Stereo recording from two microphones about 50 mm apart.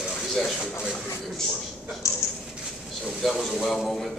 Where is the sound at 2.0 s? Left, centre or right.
Left.